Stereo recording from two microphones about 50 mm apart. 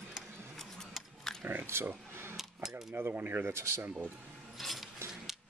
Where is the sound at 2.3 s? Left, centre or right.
Centre.